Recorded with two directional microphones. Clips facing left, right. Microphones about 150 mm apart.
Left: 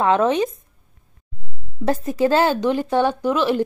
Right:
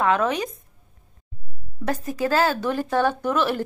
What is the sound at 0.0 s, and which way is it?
Speech, 25° left (ahead or behind).